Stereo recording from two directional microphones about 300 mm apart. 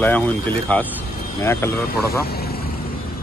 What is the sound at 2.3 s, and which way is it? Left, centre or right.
Vehicle, left.